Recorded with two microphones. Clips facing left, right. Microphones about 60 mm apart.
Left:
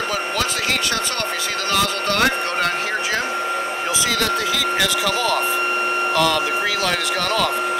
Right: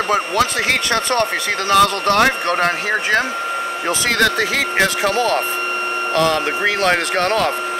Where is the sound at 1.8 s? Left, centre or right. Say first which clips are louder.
Right 6 dB; right.